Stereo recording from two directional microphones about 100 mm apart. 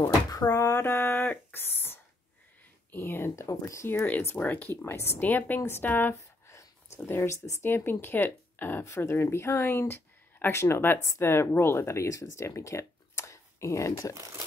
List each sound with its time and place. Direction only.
0.3 s a woman's voice: 35° left (ahead or behind); by 6.5 s 20° left (ahead or behind)
6.5 s a sound: 25° left (ahead or behind)
7.6 s a woman's voice: 20° left (ahead or behind)